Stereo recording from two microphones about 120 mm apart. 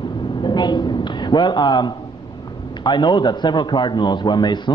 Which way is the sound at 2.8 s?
40° left (ahead or behind).